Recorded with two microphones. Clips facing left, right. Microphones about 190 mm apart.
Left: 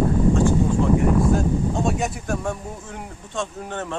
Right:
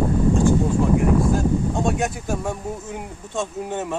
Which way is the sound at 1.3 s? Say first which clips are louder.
Right 1 dB; centre (ahead or behind).